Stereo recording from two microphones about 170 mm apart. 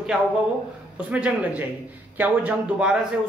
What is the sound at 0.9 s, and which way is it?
Speech, 10° right (ahead or behind).